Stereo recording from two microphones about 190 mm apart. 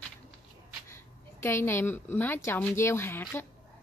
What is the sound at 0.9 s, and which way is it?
A woman's voice, 15° left (ahead or behind).